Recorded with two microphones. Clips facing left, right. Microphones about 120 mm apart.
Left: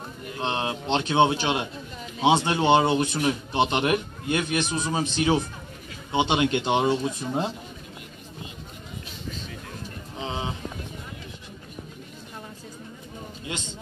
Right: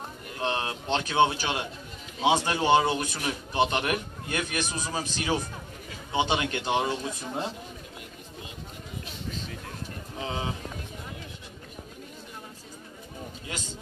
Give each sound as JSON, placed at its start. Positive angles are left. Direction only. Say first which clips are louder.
{"t": 0.4, "sound": "a man's voice", "louder": "left 2 dB", "side_deg": 25}
{"t": 10.1, "sound": "vehicle", "louder": "left 1 dB", "side_deg": 25}